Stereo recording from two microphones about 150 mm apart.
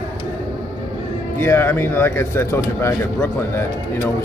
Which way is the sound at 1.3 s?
15° left (ahead or behind).